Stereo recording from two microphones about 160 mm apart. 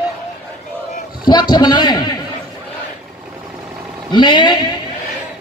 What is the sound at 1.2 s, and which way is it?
Speech, 25° left (ahead or behind).